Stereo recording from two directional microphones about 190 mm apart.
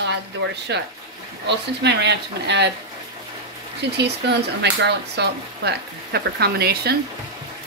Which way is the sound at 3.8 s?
60° right (ahead or behind).